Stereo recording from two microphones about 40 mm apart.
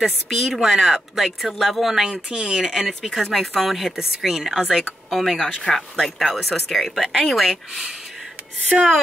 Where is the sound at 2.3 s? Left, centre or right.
Right.